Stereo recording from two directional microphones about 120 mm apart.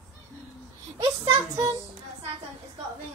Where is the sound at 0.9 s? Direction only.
30° right (ahead or behind).